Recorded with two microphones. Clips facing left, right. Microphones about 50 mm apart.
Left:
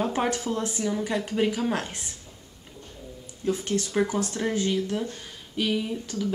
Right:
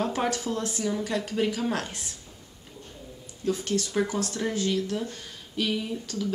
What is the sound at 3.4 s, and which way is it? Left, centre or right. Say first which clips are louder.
Speech: left 1 dB; centre.